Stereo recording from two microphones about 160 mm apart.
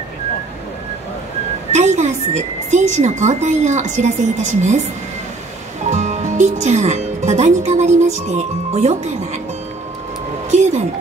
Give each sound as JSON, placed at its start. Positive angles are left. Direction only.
{"t": 1.7, "sound": "a woman's voice", "side_deg": -45}
{"t": 5.9, "sound": "speech", "side_deg": -45}
{"t": 10.5, "sound": "reversing beeps", "side_deg": -45}